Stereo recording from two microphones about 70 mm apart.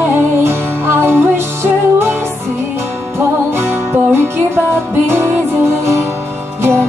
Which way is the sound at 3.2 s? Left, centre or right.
Right.